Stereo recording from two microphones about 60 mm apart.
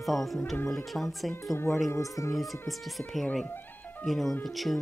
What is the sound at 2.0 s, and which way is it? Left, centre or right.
Speech, left.